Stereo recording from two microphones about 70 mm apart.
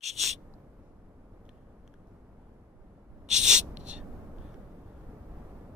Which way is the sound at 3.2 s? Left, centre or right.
Centre.